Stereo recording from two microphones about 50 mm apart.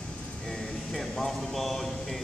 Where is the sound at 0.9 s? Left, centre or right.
Centre.